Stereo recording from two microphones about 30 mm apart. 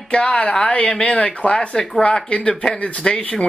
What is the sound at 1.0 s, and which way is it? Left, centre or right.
Speech, left.